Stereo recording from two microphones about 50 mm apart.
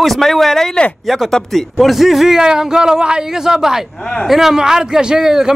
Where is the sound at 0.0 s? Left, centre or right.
Centre.